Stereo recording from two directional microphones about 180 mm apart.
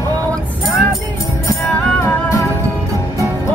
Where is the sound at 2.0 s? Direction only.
15° left (ahead or behind).